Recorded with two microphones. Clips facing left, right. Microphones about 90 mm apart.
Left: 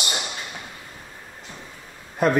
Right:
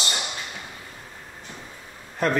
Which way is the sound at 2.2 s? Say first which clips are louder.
Left 3 dB; 10° left (ahead or behind).